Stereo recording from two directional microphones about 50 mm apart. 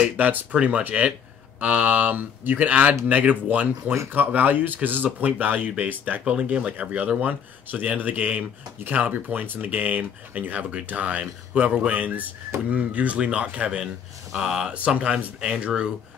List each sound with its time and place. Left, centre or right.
0.2 s speech: right
6.2 s speech: right
14.3 s speech: centre
15.0 s speech: right